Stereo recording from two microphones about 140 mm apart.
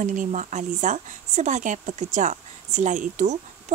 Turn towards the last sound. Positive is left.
turn(degrees=-65)  # may be behind; listen again after turning